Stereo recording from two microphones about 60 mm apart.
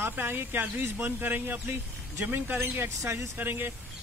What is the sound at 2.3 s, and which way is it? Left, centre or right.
Speech, right.